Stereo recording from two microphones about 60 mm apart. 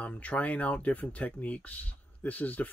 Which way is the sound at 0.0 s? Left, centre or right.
Left.